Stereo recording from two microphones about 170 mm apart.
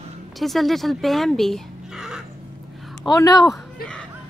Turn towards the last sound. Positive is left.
turn(degrees=20)  # may be behind; listen again after turning